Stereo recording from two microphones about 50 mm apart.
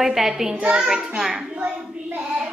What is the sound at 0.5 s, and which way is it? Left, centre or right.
A woman's voice, right.